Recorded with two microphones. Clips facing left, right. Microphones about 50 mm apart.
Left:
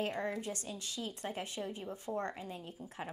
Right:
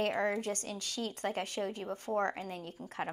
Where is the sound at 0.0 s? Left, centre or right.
Right.